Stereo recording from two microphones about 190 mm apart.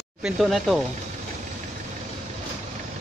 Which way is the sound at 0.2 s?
Centre (ahead or behind).